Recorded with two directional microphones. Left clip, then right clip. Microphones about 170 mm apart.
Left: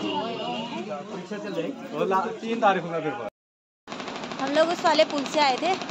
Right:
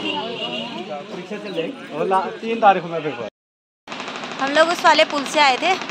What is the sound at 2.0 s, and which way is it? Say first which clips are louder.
Speech: right 5 dB; 50° right (ahead or behind).